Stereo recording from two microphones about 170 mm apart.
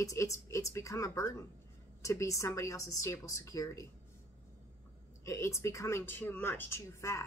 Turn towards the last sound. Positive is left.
turn(degrees=15)  # may be behind; listen again after turning